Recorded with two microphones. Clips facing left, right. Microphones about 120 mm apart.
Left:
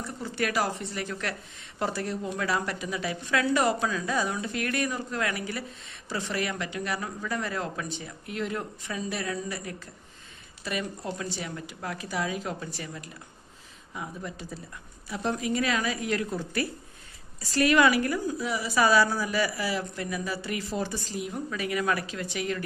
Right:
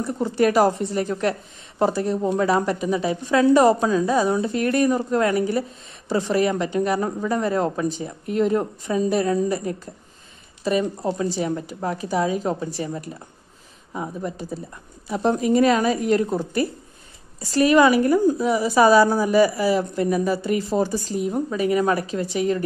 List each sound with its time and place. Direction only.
0.0 s speech: 40° right (ahead or behind)
17.6 s speech: 30° right (ahead or behind)